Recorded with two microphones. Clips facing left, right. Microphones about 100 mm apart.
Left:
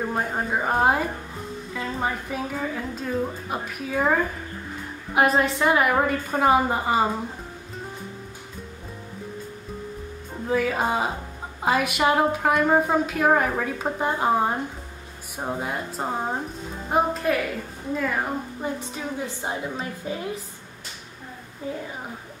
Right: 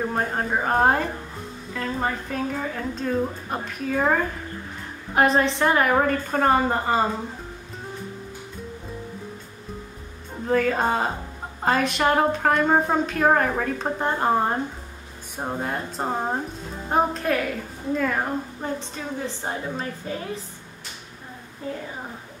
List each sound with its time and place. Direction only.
0.1 s a woman's voice: centre (ahead or behind)
10.5 s a woman's voice: 5° left (ahead or behind)